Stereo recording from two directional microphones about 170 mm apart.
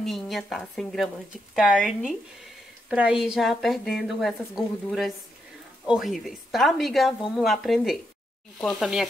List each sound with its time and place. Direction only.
0.0 s a woman's voice: centre (ahead or behind)